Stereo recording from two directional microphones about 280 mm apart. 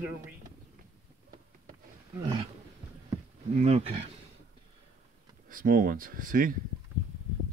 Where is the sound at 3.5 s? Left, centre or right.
Right.